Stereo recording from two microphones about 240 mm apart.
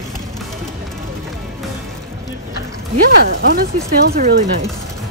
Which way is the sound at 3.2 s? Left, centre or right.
Right.